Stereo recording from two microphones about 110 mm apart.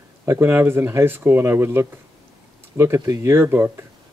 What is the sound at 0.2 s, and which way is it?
Speech, 20° right (ahead or behind).